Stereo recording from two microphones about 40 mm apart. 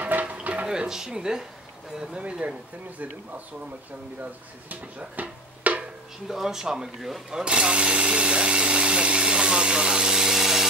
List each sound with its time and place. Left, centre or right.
0.2 s a sound: right
0.7 s speech: centre
4.2 s speech: right
6.2 s speech: centre
7.2 s speech: right